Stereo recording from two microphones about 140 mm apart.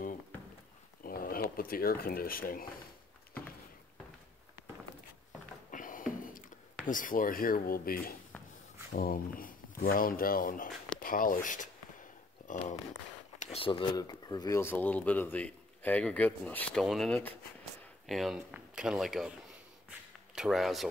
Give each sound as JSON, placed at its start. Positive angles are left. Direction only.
{"t": 1.0, "sound": "speech", "side_deg": 90}
{"t": 5.7, "sound": "a sound", "side_deg": 75}
{"t": 6.9, "sound": "speech", "side_deg": 75}
{"t": 13.4, "sound": "speech", "side_deg": 45}
{"t": 18.0, "sound": "speech", "side_deg": 0}
{"t": 19.9, "sound": "a sound", "side_deg": -5}